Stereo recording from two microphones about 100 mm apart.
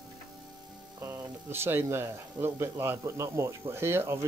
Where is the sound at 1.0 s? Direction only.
25° right (ahead or behind).